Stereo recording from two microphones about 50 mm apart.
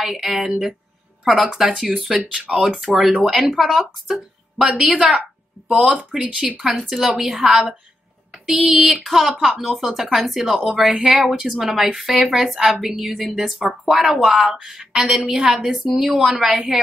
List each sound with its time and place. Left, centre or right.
0.0 s a woman's voice: centre
2.5 s speech: right
2.9 s a woman's voice: centre
8.5 s a woman's voice: centre